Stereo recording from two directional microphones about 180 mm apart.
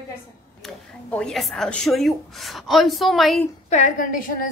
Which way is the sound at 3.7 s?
45° left (ahead or behind).